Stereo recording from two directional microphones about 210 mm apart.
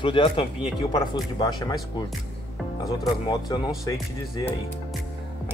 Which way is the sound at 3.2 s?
20° left (ahead or behind).